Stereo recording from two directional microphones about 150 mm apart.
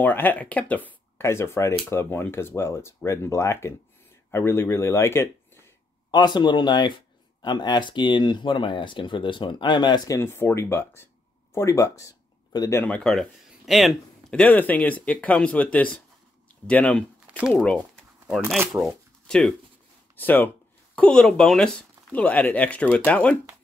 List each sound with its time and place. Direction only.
0.0 s speech: 10° left (ahead or behind)
6.1 s speech: 30° left (ahead or behind)
12.8 s speech: 5° left (ahead or behind)
18.7 s speech: centre (ahead or behind)